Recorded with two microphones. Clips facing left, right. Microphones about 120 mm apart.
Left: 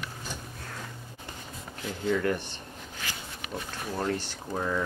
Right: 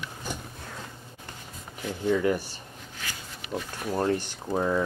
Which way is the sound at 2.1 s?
10° right (ahead or behind).